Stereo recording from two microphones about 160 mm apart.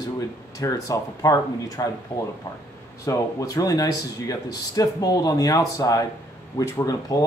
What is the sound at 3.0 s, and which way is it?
Speech, 20° left (ahead or behind).